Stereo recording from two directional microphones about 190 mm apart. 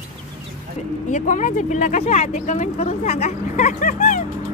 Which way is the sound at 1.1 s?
40° left (ahead or behind).